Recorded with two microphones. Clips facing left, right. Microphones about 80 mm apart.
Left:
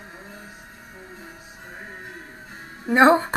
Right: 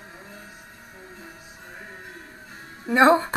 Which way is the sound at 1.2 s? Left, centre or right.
Left.